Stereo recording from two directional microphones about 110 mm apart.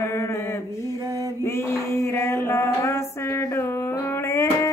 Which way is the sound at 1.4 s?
25° left (ahead or behind).